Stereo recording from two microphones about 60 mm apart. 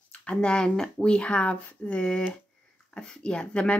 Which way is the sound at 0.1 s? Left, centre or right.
Centre.